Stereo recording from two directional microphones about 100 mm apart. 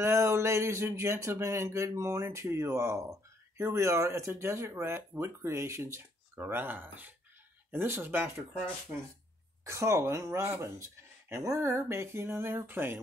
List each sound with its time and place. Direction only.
0.0 s speech: 25° right (ahead or behind)
9.7 s speech: 30° right (ahead or behind)